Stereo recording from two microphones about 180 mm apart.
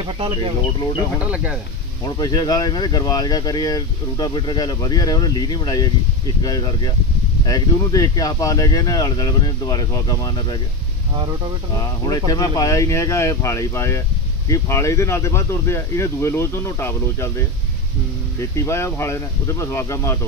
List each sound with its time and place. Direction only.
1.2 s speech: 5° right (ahead or behind)
2.0 s speech: 20° left (ahead or behind)
12.3 s speech: 20° left (ahead or behind)
18.7 s speech: 15° left (ahead or behind)